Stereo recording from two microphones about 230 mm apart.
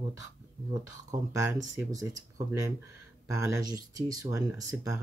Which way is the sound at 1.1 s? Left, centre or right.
Centre.